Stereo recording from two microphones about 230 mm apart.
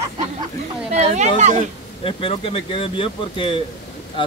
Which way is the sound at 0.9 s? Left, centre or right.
Right.